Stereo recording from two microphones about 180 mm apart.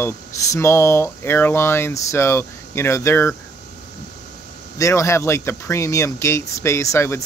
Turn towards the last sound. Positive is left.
turn(degrees=15)  # may be behind; listen again after turning